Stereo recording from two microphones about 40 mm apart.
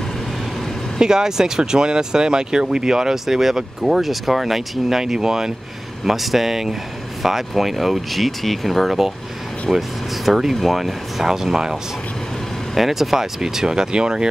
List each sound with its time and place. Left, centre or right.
0.9 s speech: centre
6.0 s speech: centre
12.7 s speech: centre; by 14.2 s right